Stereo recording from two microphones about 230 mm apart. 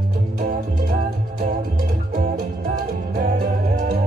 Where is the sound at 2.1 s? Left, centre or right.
Right.